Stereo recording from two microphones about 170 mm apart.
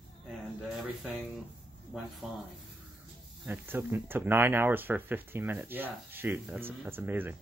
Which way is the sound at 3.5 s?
15° right (ahead or behind).